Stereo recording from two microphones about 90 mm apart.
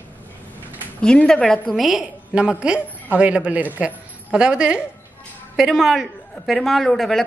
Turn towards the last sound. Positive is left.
turn(degrees=5)  # may be behind; listen again after turning